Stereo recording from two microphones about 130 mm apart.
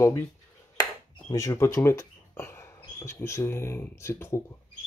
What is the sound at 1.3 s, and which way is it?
Speech, 25° left (ahead or behind).